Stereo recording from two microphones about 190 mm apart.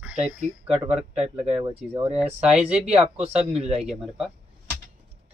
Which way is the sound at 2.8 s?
35° right (ahead or behind).